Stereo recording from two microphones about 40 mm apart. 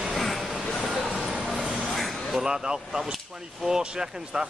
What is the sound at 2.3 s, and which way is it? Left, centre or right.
Speech, centre.